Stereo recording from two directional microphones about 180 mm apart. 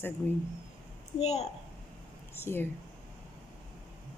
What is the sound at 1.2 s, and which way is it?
Speech, 35° left (ahead or behind).